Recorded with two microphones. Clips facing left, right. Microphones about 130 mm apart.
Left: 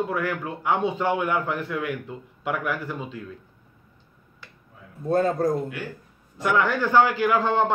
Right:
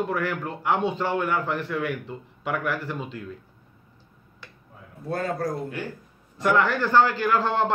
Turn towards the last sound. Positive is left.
turn(degrees=5)  # may be behind; listen again after turning